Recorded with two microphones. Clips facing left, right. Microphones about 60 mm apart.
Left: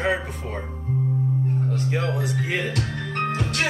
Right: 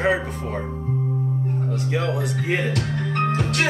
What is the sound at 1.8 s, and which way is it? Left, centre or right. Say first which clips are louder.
Speech: right 1 dB; right.